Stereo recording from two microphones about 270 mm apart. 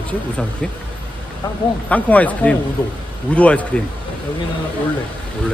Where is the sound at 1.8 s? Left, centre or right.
Centre.